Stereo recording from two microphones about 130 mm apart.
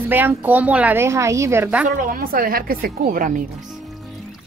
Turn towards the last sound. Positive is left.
turn(degrees=-90)